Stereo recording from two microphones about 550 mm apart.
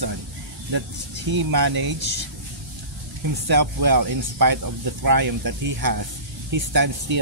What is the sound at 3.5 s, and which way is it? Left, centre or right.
Speech, right.